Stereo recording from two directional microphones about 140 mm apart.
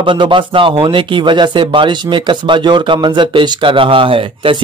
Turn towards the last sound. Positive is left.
turn(degrees=-40)  # may be behind; listen again after turning